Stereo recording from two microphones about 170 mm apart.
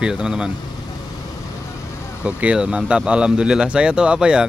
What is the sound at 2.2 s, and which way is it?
Speech, 5° right (ahead or behind).